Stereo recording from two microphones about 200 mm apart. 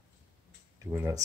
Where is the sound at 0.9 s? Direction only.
15° right (ahead or behind).